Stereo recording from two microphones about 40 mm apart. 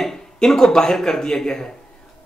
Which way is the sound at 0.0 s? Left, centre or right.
Centre.